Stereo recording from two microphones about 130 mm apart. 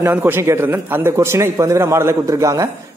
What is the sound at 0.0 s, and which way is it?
A man's voice, 15° right (ahead or behind).